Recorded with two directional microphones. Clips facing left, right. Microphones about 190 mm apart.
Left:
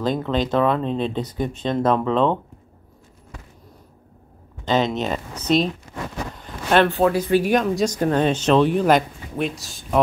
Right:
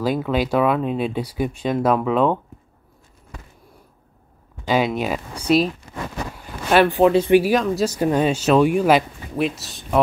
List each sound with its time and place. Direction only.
0.0 s speech: 10° right (ahead or behind)
4.6 s speech: 10° right (ahead or behind)
7.4 s speech: 5° right (ahead or behind)